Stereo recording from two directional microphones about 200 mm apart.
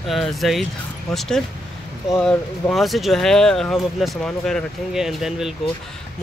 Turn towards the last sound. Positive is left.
turn(degrees=0)  # may be behind; listen again after turning